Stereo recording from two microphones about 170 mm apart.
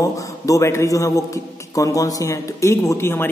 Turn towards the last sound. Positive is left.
turn(degrees=15)  # may be behind; listen again after turning